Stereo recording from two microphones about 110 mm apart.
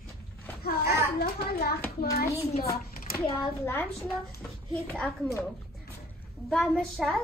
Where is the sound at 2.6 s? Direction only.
25° left (ahead or behind).